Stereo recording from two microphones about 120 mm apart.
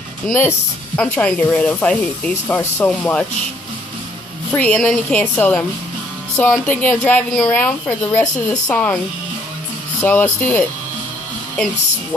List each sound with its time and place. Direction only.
0.3 s a woman's voice: 15° left (ahead or behind)
4.5 s a woman's voice: 15° left (ahead or behind)
10.0 s a woman's voice: 15° left (ahead or behind)